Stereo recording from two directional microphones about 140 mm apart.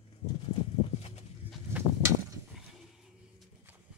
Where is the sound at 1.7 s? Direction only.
20° right (ahead or behind).